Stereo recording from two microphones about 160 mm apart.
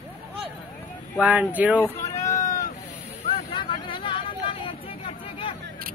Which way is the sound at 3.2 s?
30° left (ahead or behind).